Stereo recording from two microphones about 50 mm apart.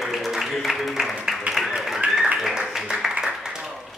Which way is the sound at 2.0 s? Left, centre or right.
Right.